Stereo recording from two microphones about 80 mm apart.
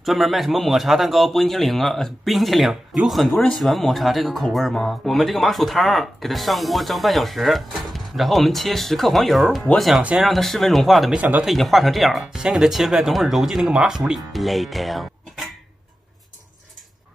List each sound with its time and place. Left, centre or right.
0.0 s speech: centre
11.1 s speech: right
11.4 s speech: centre